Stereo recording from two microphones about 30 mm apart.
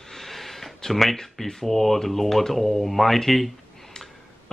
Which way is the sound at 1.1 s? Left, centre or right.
Centre.